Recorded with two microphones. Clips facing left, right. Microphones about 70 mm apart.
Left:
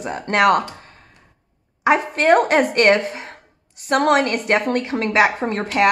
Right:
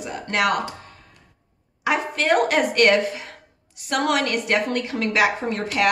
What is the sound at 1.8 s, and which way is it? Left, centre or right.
A woman's voice, left.